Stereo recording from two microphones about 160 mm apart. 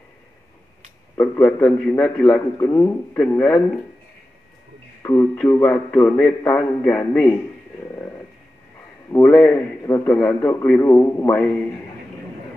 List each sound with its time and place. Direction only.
1.1 s a man's voice: 10° left (ahead or behind)
2.2 s a man's voice: 20° left (ahead or behind)
5.0 s a man's voice: 10° left (ahead or behind)
9.1 s a man's voice: 5° left (ahead or behind)